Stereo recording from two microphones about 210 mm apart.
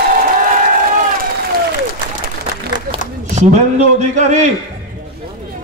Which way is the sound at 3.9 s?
35° right (ahead or behind).